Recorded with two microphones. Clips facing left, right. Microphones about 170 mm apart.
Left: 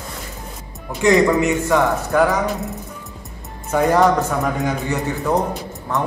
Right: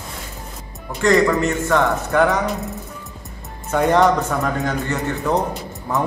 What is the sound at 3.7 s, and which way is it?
A man's voice, 5° left (ahead or behind).